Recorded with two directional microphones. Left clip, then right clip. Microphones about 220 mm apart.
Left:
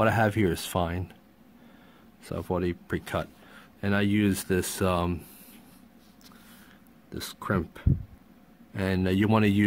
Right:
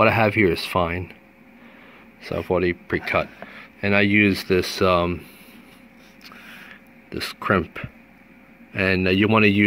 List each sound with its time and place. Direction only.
0.0 s speech: 25° left (ahead or behind)
2.3 s speech: 25° left (ahead or behind)
7.3 s speech: 10° left (ahead or behind)
8.7 s speech: 25° left (ahead or behind)